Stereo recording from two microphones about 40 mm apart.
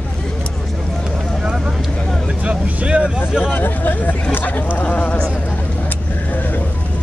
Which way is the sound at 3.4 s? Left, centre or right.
Left.